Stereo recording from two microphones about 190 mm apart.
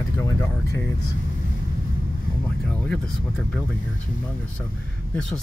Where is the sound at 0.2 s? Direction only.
15° left (ahead or behind).